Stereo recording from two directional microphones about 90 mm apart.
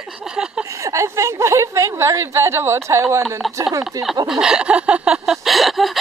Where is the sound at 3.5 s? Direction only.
35° right (ahead or behind).